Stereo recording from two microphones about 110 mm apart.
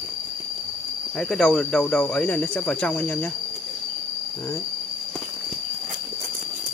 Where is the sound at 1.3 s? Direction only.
5° left (ahead or behind).